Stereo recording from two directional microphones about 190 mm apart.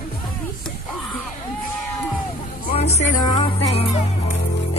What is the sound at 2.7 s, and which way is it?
Music, 35° left (ahead or behind).